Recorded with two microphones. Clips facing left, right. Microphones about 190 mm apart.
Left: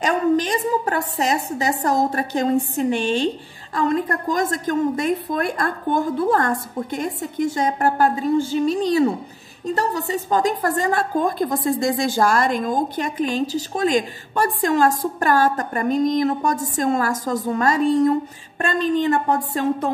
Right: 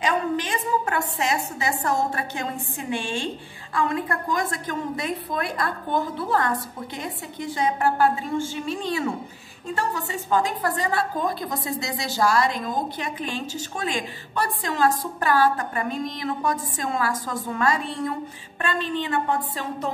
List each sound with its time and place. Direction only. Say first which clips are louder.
0.0 s a woman's voice: left 6 dB; 40° left (ahead or behind)